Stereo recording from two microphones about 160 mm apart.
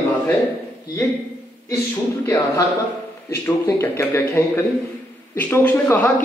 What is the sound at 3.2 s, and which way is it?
A man's voice, 15° left (ahead or behind).